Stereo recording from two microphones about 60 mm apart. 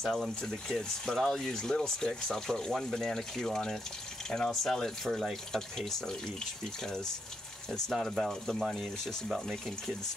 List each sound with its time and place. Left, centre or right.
0.0 s speech: centre
7.9 s speech: centre